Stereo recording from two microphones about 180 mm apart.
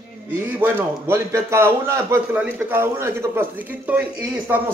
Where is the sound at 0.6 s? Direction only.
15° right (ahead or behind).